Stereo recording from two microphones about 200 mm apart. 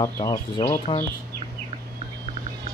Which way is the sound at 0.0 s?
15° left (ahead or behind).